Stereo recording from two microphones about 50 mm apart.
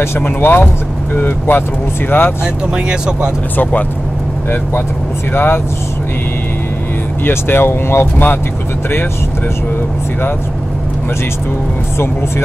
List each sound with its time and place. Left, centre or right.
0.0 s speech: left
2.4 s speech: centre
5.3 s speech: left
7.2 s speech: left